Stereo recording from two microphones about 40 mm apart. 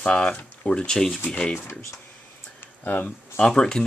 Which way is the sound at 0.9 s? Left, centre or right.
Centre.